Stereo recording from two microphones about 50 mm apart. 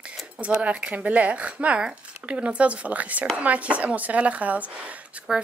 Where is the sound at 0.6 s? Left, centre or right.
Right.